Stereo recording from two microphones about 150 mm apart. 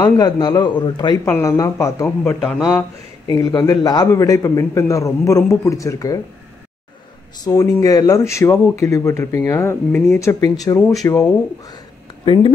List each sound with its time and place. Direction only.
0.0 s speech: 25° left (ahead or behind)
1.2 s speech: 20° left (ahead or behind)
7.4 s speech: 25° left (ahead or behind)